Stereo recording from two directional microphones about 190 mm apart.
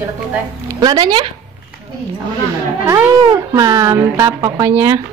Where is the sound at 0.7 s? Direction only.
20° right (ahead or behind).